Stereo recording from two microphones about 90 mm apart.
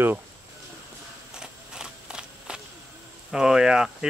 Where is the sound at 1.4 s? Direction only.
10° right (ahead or behind).